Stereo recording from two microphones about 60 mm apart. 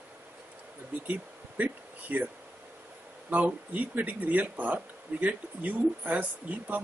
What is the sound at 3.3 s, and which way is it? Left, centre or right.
Speech, right.